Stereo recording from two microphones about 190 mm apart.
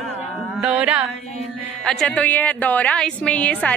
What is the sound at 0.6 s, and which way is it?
A woman's voice, 5° right (ahead or behind).